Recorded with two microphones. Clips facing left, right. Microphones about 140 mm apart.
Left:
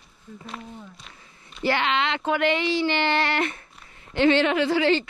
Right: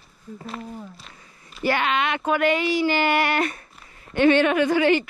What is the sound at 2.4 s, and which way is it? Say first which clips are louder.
Speech: right 2 dB; 25° left (ahead or behind).